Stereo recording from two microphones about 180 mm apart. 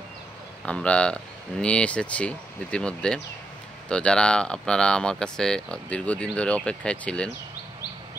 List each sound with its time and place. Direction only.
0.7 s speech: 5° left (ahead or behind)